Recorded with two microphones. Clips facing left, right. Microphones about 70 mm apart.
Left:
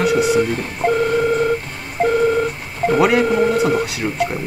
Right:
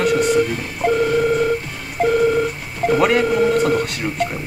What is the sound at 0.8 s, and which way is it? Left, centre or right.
Telephone dialing, left.